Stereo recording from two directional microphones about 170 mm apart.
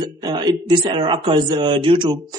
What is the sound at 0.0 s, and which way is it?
Speech, 25° right (ahead or behind).